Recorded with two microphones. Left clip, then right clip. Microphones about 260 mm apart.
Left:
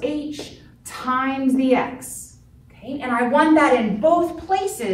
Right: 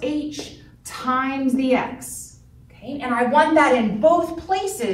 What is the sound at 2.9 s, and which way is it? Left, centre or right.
A woman's voice, centre.